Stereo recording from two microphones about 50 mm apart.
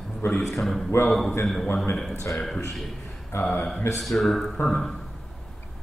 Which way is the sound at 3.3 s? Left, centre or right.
Left.